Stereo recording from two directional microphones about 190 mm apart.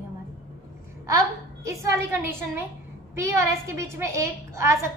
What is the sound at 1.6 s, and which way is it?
A woman's voice, 15° right (ahead or behind).